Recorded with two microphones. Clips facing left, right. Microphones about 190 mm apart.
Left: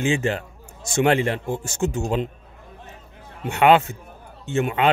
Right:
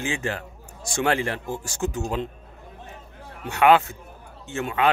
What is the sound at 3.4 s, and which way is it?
Speech, 25° left (ahead or behind).